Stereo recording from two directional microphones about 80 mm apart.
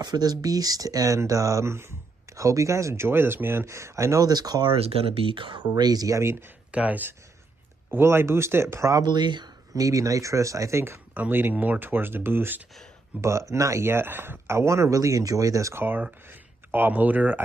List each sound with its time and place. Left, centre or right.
0.0 s speech: right
5.3 s speech: right
6.7 s speech: centre; by 9.0 s right
9.0 s speech: right
9.8 s speech: right
11.1 s speech: right
13.2 s speech: right
15.8 s speech: right